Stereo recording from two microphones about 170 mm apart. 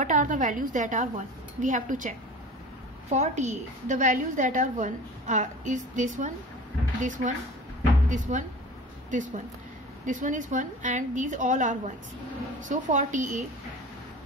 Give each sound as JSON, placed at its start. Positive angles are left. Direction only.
{"t": 0.0, "sound": "a woman's voice", "side_deg": -50}
{"t": 10.0, "sound": "a woman's voice", "side_deg": -50}